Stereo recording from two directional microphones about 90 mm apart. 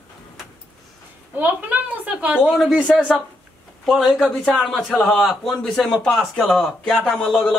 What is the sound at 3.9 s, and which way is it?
A man's voice, 5° right (ahead or behind).